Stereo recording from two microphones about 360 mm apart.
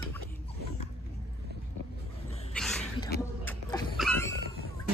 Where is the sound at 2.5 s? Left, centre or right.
Centre.